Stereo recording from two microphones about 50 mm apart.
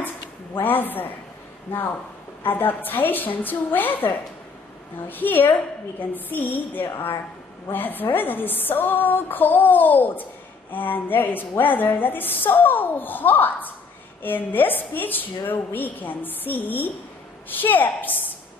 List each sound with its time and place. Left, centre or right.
0.6 s a woman's voice: left
2.4 s a woman's voice: left